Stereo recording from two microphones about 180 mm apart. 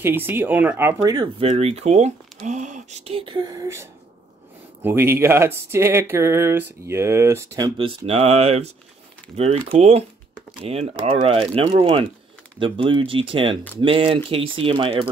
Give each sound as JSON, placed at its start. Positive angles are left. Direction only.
{"t": 0.0, "sound": "speech", "side_deg": -10}
{"t": 1.4, "sound": "speech", "side_deg": -35}
{"t": 4.8, "sound": "speech", "side_deg": -15}